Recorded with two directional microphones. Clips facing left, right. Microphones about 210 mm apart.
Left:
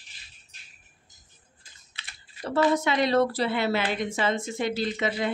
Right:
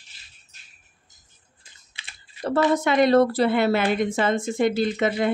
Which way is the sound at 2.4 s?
50° right (ahead or behind).